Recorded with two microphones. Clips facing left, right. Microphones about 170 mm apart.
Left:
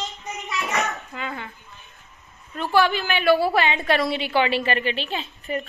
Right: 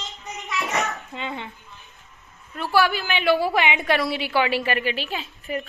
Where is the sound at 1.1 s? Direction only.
25° right (ahead or behind).